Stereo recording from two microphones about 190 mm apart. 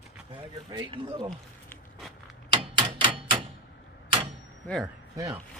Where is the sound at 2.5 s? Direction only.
25° right (ahead or behind).